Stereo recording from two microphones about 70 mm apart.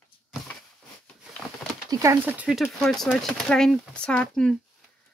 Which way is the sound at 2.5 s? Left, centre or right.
Centre.